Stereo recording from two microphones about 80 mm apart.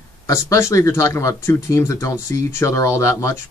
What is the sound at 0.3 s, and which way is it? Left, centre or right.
Speech, left.